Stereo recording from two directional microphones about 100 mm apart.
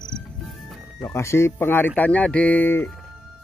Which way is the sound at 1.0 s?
25° left (ahead or behind).